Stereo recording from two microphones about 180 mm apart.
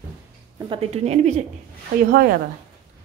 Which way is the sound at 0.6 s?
30° right (ahead or behind).